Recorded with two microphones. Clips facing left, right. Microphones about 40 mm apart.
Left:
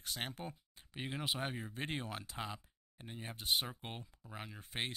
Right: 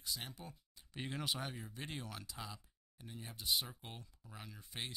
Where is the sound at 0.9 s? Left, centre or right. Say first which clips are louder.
Left 2 dB; left.